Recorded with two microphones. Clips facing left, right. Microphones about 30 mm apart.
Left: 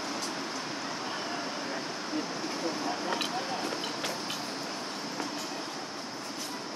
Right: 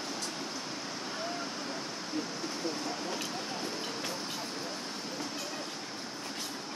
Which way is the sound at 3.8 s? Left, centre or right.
Left.